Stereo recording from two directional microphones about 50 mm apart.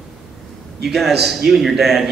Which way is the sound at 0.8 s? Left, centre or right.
Centre.